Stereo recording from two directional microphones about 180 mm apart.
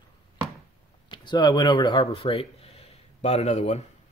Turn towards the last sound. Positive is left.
turn(degrees=40)  # may be behind; listen again after turning